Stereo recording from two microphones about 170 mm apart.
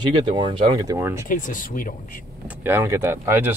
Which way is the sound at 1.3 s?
50° left (ahead or behind).